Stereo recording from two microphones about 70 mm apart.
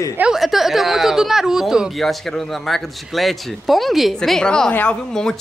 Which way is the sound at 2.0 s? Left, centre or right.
Centre.